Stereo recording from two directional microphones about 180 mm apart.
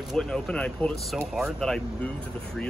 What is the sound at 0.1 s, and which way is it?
Speech, 5° left (ahead or behind).